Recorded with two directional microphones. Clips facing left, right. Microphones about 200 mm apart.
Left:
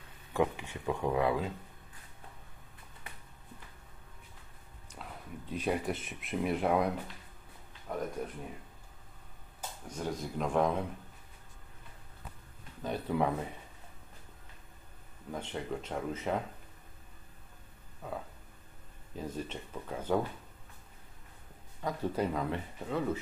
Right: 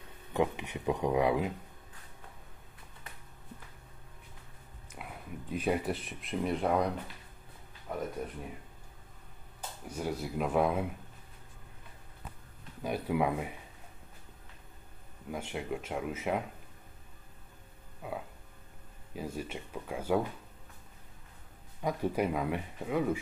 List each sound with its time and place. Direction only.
0.3 s speech: 20° right (ahead or behind)
4.9 s speech: 10° right (ahead or behind)
7.9 s speech: 5° right (ahead or behind)
9.8 s speech: 10° right (ahead or behind)
12.8 s speech: 10° right (ahead or behind)
15.3 s speech: 10° right (ahead or behind)
18.0 s a sound: 10° right (ahead or behind)
19.1 s speech: 10° right (ahead or behind)
21.8 s speech: 15° right (ahead or behind)